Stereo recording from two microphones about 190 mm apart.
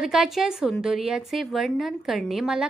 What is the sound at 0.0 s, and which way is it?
A woman's voice, centre (ahead or behind).